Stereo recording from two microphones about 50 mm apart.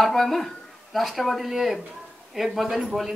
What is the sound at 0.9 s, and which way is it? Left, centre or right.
Speech, centre.